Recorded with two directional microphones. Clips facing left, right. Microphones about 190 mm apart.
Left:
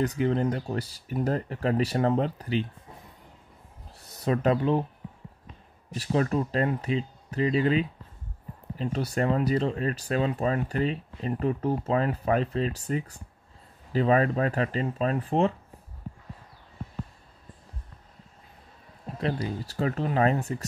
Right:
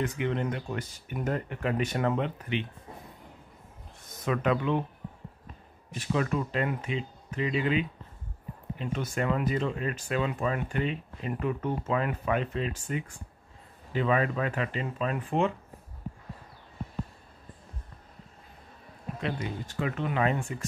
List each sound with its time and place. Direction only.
0.0 s speech: 35° left (ahead or behind)
4.0 s speech: 35° left (ahead or behind)
5.9 s speech: 35° left (ahead or behind)
19.1 s speech: 35° left (ahead or behind)